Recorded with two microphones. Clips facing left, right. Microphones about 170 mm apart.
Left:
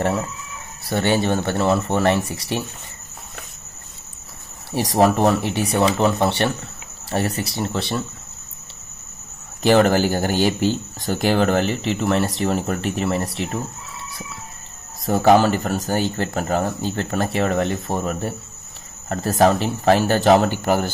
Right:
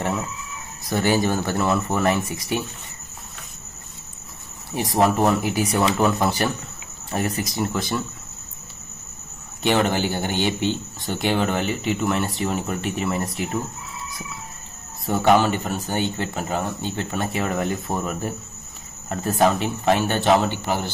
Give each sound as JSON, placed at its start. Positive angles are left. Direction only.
{"t": 0.8, "sound": "speech", "side_deg": 30}
{"t": 4.9, "sound": "speech", "side_deg": 35}
{"t": 9.6, "sound": "speech", "side_deg": 40}
{"t": 15.0, "sound": "speech", "side_deg": 40}